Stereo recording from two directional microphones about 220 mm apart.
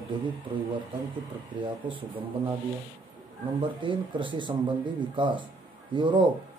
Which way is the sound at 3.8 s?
20° right (ahead or behind).